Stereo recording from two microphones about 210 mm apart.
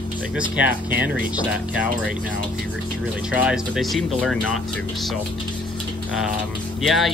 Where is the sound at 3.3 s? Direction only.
5° right (ahead or behind).